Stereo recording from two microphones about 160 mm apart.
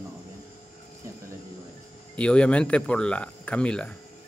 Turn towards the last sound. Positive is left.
turn(degrees=5)  # may be behind; listen again after turning